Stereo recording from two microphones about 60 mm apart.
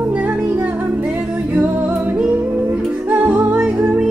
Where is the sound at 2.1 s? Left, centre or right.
Right.